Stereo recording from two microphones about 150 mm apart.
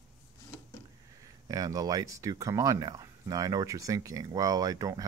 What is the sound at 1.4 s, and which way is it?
Speech, 25° right (ahead or behind).